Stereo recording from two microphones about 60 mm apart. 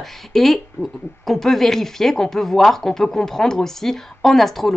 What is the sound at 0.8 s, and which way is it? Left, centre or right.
Speech, left.